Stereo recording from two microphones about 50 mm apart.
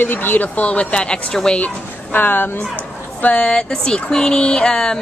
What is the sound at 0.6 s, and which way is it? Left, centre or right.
Speech, left.